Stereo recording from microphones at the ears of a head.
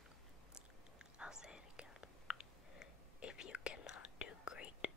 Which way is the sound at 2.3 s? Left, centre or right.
Left.